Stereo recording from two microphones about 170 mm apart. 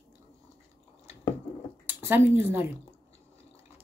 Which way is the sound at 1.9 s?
10° right (ahead or behind).